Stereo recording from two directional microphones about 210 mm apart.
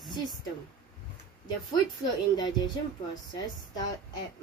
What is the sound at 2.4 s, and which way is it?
Speech, 20° left (ahead or behind).